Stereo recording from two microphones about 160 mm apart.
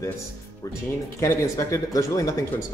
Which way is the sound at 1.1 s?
20° left (ahead or behind).